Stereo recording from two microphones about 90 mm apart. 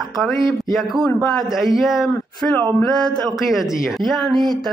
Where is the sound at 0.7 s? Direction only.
Centre (ahead or behind).